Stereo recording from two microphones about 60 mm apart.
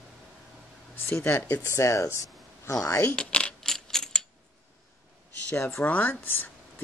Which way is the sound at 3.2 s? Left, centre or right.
Centre.